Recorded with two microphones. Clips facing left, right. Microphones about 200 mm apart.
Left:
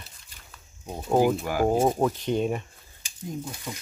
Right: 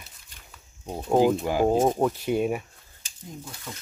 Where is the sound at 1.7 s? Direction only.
10° left (ahead or behind).